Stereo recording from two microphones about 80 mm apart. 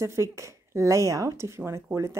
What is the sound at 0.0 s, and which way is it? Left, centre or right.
A woman's voice, right.